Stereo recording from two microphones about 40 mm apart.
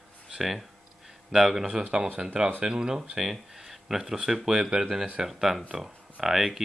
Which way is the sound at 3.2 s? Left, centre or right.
Centre.